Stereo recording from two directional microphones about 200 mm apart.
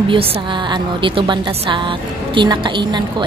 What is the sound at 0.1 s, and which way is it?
A woman's voice, 25° right (ahead or behind).